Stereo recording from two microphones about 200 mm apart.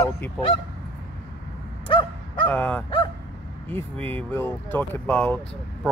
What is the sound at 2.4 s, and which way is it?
Speech, 5° left (ahead or behind).